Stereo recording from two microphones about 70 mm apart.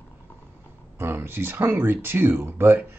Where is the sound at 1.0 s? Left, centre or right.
Right.